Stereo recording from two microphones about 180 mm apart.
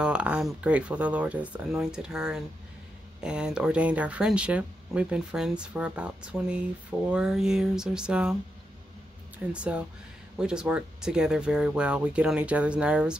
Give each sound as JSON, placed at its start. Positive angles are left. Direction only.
{"t": 0.0, "sound": "speech", "side_deg": -5}
{"t": 9.5, "sound": "speech", "side_deg": -5}